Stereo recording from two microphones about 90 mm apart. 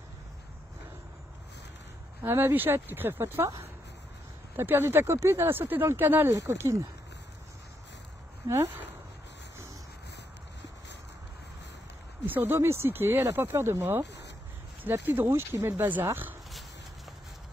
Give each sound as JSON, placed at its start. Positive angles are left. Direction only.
{"t": 2.2, "sound": "speech", "side_deg": -25}
{"t": 4.6, "sound": "speech", "side_deg": -25}
{"t": 8.5, "sound": "speech", "side_deg": -30}
{"t": 12.3, "sound": "speech", "side_deg": -25}